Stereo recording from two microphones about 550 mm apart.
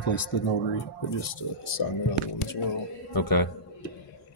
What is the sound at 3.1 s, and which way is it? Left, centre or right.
Speech, left.